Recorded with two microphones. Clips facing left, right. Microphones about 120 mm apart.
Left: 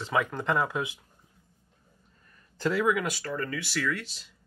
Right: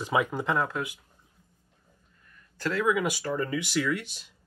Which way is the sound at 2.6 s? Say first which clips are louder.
Left 2 dB; 10° left (ahead or behind).